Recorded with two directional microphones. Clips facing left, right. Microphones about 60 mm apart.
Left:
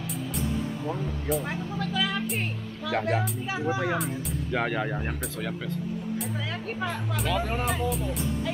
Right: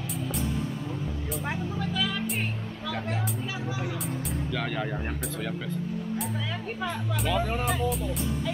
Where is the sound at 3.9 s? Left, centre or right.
Centre.